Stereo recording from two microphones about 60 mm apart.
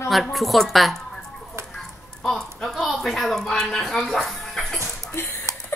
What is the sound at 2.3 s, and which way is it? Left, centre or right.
Speech, centre.